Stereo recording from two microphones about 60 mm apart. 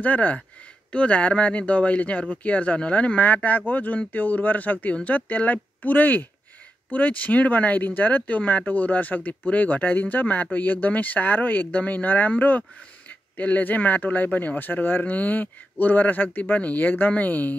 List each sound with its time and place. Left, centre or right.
0.0 s speech: left